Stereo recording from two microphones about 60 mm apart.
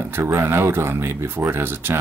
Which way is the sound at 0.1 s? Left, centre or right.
Right.